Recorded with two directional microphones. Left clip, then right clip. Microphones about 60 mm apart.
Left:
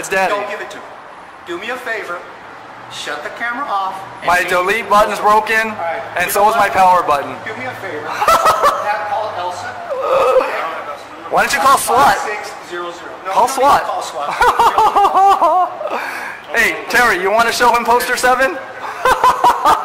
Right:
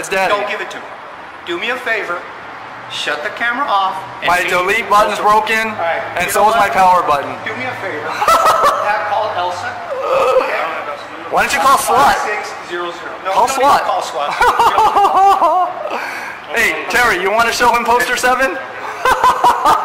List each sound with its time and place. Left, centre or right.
0.1 s speech: centre
3.1 s speech: centre
4.3 s speech: centre
8.1 s snicker: centre
10.0 s a sound: centre
11.3 s speech: centre
13.3 s speech: centre
15.9 s a sound: centre
17.0 s speech: centre
17.3 s a man's voice: centre
18.2 s speech: centre
19.0 s snicker: centre